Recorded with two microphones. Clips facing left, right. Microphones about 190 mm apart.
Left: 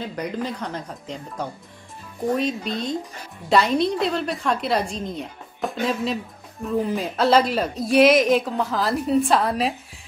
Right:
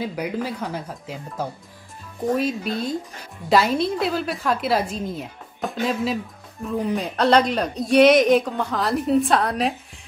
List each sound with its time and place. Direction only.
0.0 s a woman's voice: 10° right (ahead or behind)